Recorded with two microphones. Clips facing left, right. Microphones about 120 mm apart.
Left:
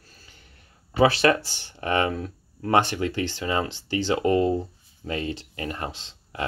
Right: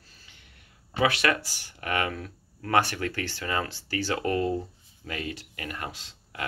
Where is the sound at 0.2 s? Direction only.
40° left (ahead or behind).